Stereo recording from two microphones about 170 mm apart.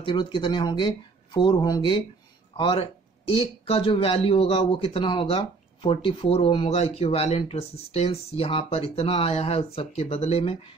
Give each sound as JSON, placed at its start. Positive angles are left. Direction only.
{"t": 0.0, "sound": "speech", "side_deg": 30}